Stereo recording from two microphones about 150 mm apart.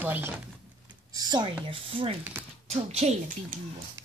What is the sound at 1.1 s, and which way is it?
Speech, 30° right (ahead or behind).